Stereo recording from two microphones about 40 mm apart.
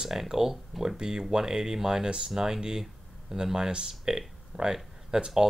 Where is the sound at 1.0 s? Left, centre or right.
Centre.